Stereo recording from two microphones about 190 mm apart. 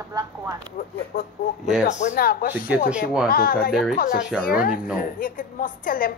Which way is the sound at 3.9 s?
50° left (ahead or behind).